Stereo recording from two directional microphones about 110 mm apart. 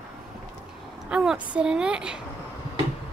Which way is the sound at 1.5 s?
10° right (ahead or behind).